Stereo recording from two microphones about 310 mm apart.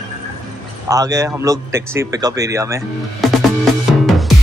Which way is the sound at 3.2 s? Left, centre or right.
Centre.